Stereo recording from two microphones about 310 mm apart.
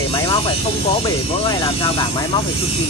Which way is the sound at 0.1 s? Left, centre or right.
Centre.